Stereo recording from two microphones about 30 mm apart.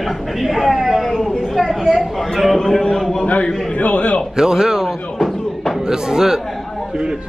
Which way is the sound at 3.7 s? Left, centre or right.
Left.